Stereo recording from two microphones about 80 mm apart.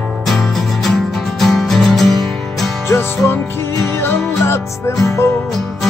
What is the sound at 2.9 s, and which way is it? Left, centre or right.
Music, left.